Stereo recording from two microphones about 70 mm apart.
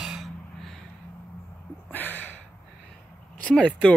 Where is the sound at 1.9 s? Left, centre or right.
Left.